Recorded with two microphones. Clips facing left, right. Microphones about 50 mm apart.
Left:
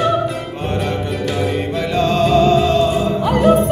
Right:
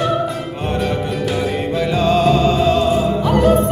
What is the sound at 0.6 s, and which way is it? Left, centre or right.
Music, centre.